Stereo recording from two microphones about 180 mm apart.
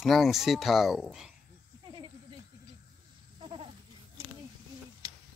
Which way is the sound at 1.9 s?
30° right (ahead or behind).